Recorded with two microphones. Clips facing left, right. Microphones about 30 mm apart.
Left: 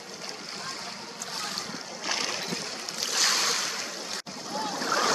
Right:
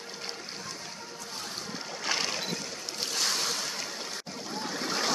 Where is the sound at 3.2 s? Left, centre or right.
Left.